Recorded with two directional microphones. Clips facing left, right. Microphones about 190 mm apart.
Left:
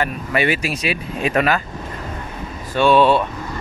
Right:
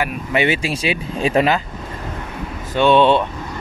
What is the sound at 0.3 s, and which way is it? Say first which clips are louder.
Speech: right 2 dB; 25° right (ahead or behind).